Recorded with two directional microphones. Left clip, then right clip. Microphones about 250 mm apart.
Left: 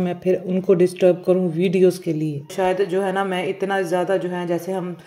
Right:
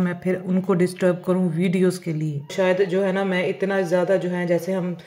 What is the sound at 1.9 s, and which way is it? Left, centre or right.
Speech, left.